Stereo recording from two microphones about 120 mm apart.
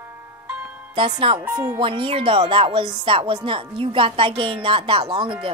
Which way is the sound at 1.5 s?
35° right (ahead or behind).